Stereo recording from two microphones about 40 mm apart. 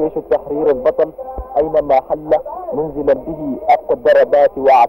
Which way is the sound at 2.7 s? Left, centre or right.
Left.